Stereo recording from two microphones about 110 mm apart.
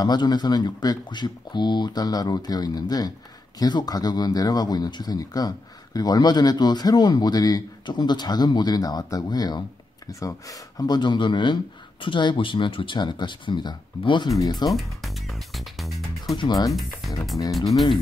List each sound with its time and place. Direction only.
0.0 s a man's voice: 40° left (ahead or behind)
14.7 s speech: centre (ahead or behind)
16.3 s a man's voice: 35° left (ahead or behind)
17.5 s speech: centre (ahead or behind)